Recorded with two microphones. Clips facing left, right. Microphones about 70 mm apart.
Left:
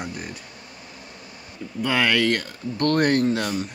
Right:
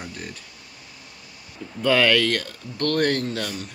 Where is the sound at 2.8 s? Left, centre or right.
Left.